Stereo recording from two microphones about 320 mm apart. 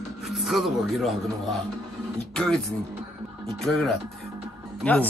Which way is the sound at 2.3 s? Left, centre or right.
Centre.